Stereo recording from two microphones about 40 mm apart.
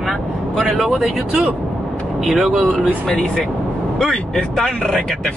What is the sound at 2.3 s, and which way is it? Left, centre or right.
Speech, centre.